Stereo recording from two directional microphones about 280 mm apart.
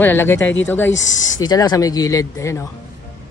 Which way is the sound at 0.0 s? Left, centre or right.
Centre.